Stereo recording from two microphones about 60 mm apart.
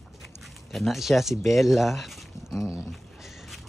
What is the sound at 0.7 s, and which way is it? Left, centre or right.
Speech, centre.